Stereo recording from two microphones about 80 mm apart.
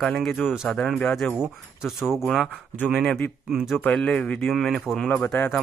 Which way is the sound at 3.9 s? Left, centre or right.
Centre.